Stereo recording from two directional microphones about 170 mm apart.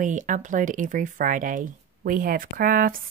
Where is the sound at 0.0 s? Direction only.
50° right (ahead or behind).